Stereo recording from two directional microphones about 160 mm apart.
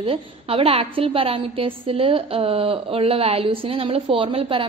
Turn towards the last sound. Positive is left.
turn(degrees=-35)  # may be behind; listen again after turning